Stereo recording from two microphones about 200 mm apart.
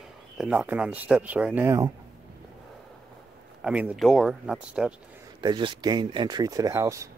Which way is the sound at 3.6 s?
5° right (ahead or behind).